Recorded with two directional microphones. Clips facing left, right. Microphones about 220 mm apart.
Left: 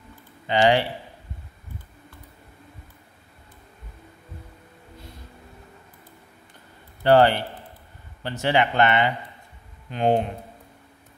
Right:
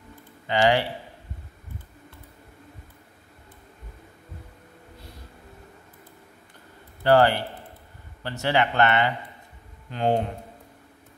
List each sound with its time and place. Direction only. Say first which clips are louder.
0.5 s speech: left 2 dB; 20° left (ahead or behind)
7.0 s a man's voice: left 2 dB; 20° left (ahead or behind)